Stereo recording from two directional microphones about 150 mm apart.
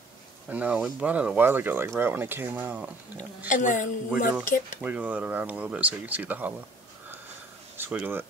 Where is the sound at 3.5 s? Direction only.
55° left (ahead or behind).